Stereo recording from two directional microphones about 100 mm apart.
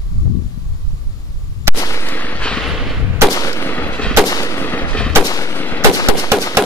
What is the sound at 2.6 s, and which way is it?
Gunshot, centre (ahead or behind).